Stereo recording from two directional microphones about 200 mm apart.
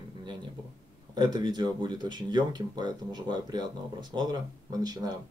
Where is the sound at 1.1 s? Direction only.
20° right (ahead or behind).